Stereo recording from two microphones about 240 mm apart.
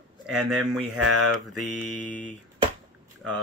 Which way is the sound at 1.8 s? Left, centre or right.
Left.